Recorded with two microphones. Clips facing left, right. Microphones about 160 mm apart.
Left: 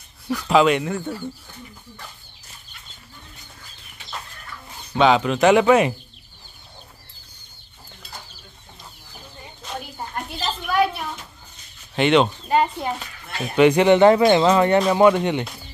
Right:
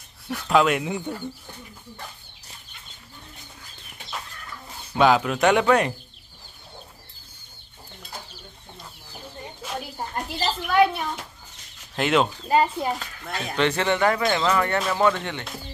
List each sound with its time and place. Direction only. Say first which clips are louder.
0.5 s a child's voice: left 3 dB; centre (ahead or behind)
4.9 s a child's voice: left 2 dB; 5° right (ahead or behind)
9.6 s a sound: even; 5° right (ahead or behind)
11.9 s a child's voice: left 4 dB; centre (ahead or behind)
13.6 s speech: left 9 dB; 15° left (ahead or behind)